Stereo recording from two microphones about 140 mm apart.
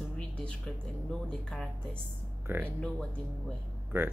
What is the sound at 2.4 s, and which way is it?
Speech, 15° right (ahead or behind).